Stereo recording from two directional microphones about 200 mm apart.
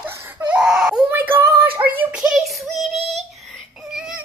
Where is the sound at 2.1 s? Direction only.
5° right (ahead or behind).